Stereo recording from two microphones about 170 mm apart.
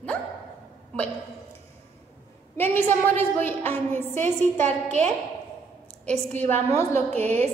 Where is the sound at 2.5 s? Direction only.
10° left (ahead or behind).